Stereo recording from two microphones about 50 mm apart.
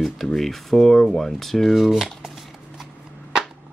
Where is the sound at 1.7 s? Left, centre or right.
Centre.